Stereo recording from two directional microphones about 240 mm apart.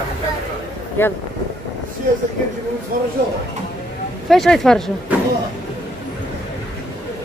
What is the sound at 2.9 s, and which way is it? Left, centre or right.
Speech, right.